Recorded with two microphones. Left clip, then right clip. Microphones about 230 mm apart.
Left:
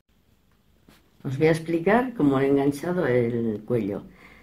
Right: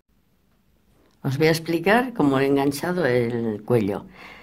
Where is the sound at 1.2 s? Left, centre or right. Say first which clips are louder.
Right 1 dB; right.